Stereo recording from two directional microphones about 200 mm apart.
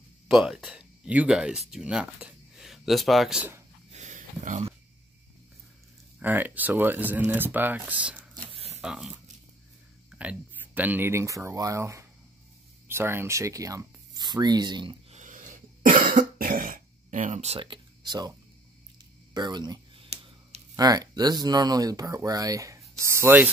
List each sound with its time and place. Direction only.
0.3 s speech: 5° right (ahead or behind)
3.9 s a sound: 35° right (ahead or behind)
6.1 s speech: 10° right (ahead or behind)
8.5 s zipper: 30° right (ahead or behind)
8.8 s speech: 5° right (ahead or behind); by 15.1 s 25° right (ahead or behind)
15.1 s cough: 40° right (ahead or behind)
16.3 s throat clearing: 45° right (ahead or behind); by 18.3 s 20° right (ahead or behind)
19.3 s speech: 20° right (ahead or behind)